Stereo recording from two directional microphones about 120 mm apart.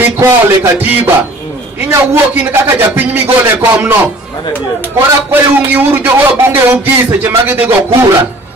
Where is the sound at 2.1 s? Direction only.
15° right (ahead or behind).